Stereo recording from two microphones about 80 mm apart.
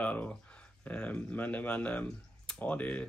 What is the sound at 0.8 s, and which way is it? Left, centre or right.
Speech, centre.